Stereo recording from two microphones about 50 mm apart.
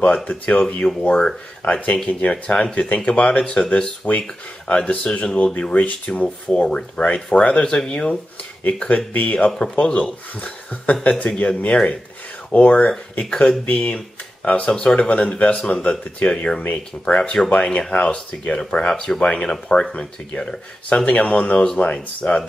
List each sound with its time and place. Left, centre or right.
0.0 s speech: left
1.0 s speech: centre; by 9.5 s left
9.8 s speech: left
13.2 s speech: centre
16.2 s speech: left
16.7 s speech: left